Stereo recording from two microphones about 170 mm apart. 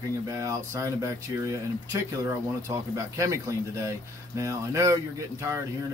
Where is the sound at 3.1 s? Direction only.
20° right (ahead or behind).